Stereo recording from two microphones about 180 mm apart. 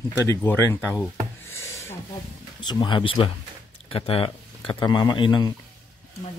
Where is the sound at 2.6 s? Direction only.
25° left (ahead or behind).